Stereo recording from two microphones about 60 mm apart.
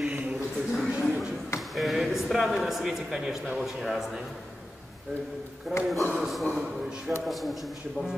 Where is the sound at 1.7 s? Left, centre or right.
Centre.